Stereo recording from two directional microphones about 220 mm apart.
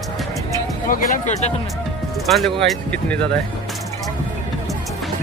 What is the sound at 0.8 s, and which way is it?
Speech, 35° left (ahead or behind).